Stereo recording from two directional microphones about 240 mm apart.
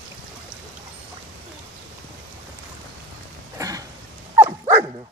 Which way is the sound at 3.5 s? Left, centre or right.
Centre.